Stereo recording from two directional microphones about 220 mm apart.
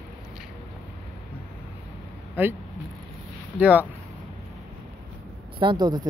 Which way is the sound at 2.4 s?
10° right (ahead or behind).